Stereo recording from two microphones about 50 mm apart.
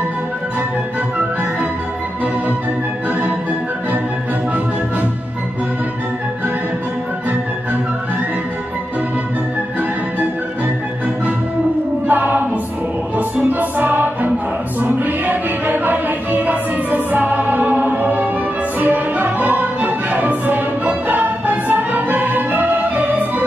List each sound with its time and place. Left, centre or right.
12.1 s choir: right
13.4 s music: right